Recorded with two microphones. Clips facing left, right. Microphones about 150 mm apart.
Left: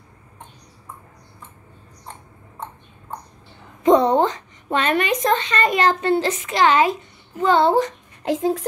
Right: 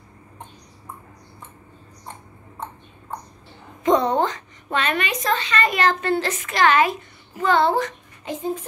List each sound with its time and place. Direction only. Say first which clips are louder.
3.8 s speech: left 4 dB; 25° left (ahead or behind)
8.2 s speech: left 6 dB; 90° left